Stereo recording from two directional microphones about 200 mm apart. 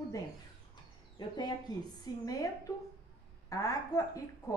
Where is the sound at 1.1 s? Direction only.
20° left (ahead or behind).